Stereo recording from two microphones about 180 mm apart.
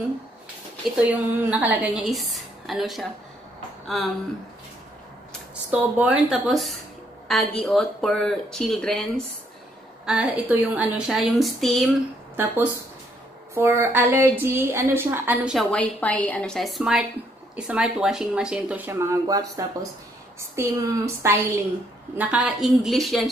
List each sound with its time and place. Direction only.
0.9 s speech: 10° right (ahead or behind)
5.7 s speech: 10° right (ahead or behind)
13.6 s a woman's voice: 15° right (ahead or behind)
15.7 s a woman's voice: 10° left (ahead or behind)